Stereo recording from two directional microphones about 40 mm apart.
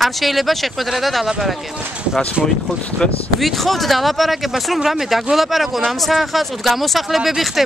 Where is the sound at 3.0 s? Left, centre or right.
Left.